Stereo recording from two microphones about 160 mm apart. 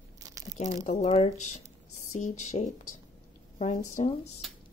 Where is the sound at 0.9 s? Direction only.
40° left (ahead or behind).